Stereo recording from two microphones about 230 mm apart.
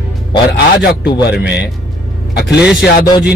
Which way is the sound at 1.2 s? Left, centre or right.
Left.